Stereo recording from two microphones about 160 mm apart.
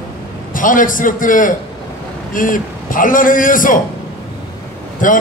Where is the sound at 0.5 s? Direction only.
55° left (ahead or behind).